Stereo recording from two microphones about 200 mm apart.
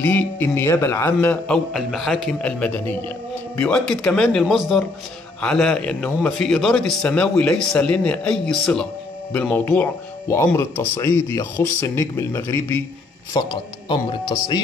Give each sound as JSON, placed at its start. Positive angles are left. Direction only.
{"t": 0.0, "sound": "a man's voice", "side_deg": 10}